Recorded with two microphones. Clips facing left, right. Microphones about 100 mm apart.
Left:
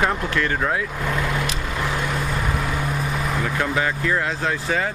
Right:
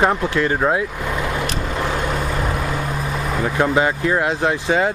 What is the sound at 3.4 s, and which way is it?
Speech, 25° right (ahead or behind).